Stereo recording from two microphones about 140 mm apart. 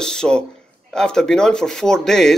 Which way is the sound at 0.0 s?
5° left (ahead or behind).